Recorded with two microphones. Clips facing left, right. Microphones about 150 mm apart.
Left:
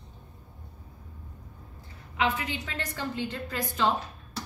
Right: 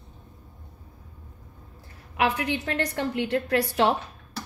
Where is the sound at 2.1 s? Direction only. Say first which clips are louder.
Right 4 dB; 70° right (ahead or behind).